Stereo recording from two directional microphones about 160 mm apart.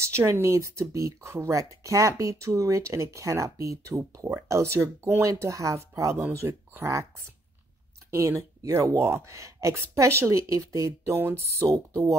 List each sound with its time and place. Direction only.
0.0 s speech: 15° right (ahead or behind)
8.1 s speech: 15° right (ahead or behind)